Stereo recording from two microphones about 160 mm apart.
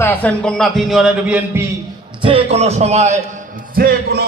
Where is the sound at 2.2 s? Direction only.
35° right (ahead or behind).